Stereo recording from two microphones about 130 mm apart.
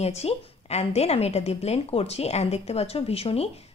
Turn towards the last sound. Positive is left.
turn(degrees=50)  # may be behind; listen again after turning